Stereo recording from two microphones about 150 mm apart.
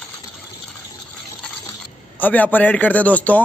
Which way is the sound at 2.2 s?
10° left (ahead or behind).